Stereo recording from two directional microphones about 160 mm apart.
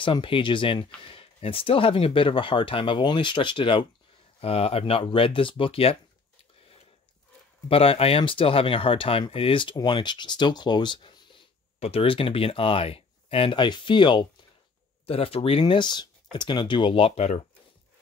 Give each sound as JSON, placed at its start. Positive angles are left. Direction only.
{"t": 0.0, "sound": "speech", "side_deg": 30}
{"t": 7.6, "sound": "speech", "side_deg": 35}